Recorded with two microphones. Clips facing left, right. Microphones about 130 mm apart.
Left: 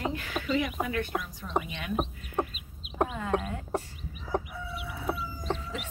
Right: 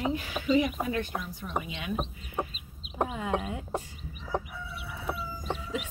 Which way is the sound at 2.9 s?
15° right (ahead or behind).